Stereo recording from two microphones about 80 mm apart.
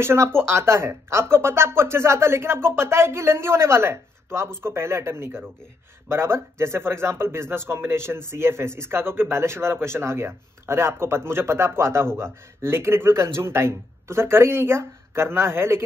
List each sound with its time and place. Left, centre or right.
0.0 s speech: right